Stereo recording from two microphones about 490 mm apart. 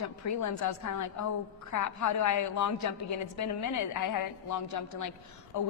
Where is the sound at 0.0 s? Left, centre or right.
Left.